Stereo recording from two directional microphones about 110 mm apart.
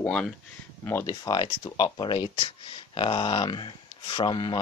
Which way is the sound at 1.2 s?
40° left (ahead or behind).